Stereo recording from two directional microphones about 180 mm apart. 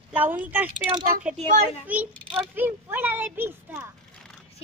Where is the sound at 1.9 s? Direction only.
10° right (ahead or behind).